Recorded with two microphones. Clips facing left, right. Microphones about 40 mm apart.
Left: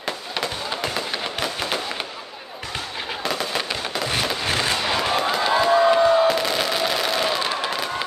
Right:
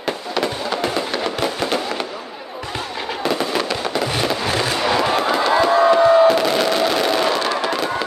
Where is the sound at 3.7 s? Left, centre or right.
Centre.